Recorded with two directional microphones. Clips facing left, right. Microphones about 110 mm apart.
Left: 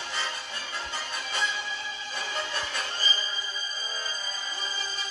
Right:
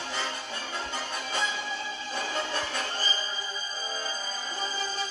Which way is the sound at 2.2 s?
35° right (ahead or behind).